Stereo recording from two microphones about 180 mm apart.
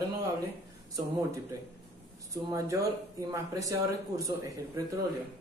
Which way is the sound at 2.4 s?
20° right (ahead or behind).